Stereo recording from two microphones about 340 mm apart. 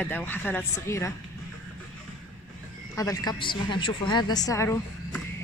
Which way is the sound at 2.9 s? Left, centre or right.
Centre.